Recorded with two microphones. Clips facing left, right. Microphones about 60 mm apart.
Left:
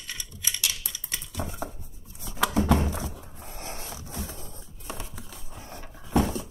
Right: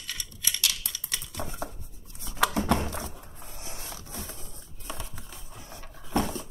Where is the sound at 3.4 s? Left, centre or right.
Left.